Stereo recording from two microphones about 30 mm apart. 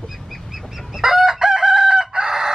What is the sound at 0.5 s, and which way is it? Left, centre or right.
Chicken, centre.